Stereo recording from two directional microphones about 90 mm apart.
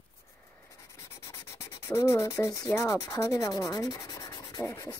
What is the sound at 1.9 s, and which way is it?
Speech, 35° left (ahead or behind).